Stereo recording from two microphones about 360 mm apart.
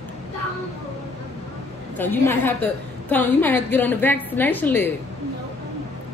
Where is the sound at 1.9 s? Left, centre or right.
Centre.